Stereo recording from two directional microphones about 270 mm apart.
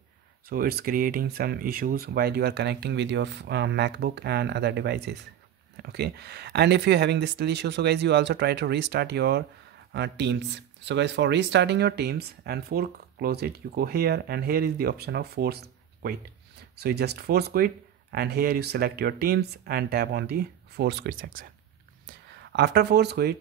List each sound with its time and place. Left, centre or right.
0.5 s speech: right